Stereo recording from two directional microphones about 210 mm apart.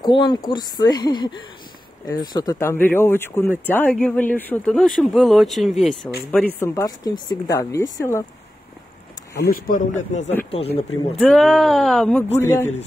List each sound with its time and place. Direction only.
0.0 s a woman's voice: 20° left (ahead or behind); by 5.9 s centre (ahead or behind)
6.6 s speech: 15° left (ahead or behind)
9.4 s a man's voice: 40° left (ahead or behind)
10.7 s speech: centre (ahead or behind)
12.4 s speech: 10° left (ahead or behind)